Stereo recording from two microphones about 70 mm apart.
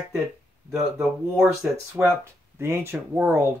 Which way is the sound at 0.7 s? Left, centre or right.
Centre.